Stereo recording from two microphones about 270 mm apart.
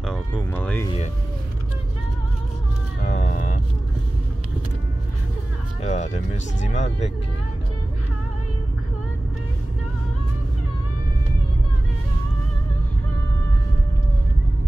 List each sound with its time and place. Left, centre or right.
0.0 s a sound: centre
3.1 s music: left
5.8 s speech: left